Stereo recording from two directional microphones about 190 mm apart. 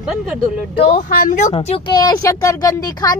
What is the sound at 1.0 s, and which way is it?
Speech, 45° left (ahead or behind).